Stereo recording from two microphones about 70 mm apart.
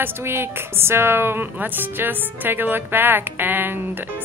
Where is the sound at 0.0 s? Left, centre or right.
Right.